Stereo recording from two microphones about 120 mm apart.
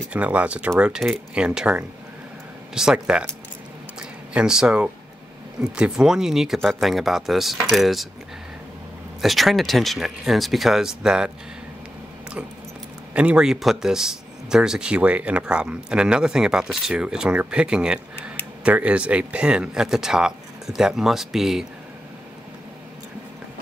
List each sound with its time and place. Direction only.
0.1 s speech: 10° right (ahead or behind)
4.3 s speech: 5° right (ahead or behind)
9.2 s speech: centre (ahead or behind)
13.1 s speech: 10° right (ahead or behind)